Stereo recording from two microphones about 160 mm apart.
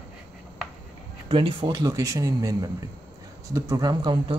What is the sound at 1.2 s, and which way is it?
Speech, 30° right (ahead or behind).